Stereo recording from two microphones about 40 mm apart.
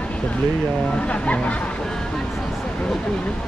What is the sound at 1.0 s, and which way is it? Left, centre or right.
Speech, left.